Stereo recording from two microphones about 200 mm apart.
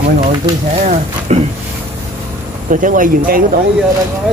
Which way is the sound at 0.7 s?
35° right (ahead or behind).